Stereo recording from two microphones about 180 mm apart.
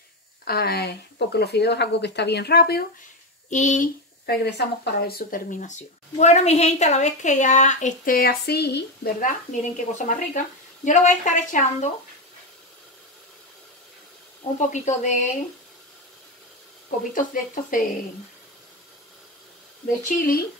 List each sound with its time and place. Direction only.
0.5 s speech: 60° left (ahead or behind)
3.4 s speech: 40° left (ahead or behind)
4.3 s speech: 60° left (ahead or behind)
9.2 s speech: 45° left (ahead or behind)
14.6 s speech: 40° left (ahead or behind)
17.1 s speech: 45° left (ahead or behind)
20.2 s speech: 55° left (ahead or behind)